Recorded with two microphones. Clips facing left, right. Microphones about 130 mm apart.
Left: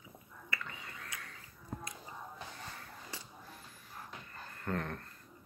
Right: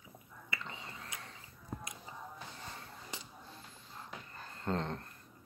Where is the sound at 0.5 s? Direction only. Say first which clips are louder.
Even; 25° right (ahead or behind).